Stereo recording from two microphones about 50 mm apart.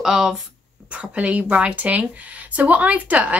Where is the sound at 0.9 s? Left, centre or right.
Right.